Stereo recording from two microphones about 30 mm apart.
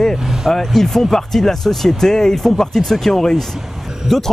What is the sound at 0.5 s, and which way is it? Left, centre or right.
Speech, centre.